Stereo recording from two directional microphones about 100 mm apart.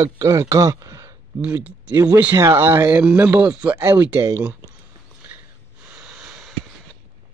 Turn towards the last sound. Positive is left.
turn(degrees=-5)  # may be behind; listen again after turning